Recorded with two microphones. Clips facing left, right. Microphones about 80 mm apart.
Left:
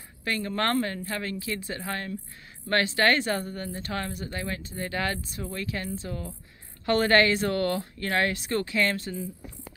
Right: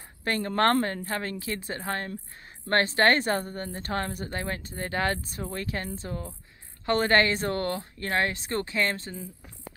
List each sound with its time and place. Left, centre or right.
0.2 s speech: right